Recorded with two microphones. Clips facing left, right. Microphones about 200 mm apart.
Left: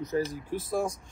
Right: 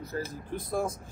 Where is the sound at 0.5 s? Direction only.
Centre (ahead or behind).